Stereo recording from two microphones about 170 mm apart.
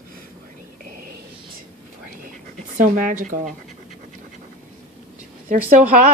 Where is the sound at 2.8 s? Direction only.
50° right (ahead or behind).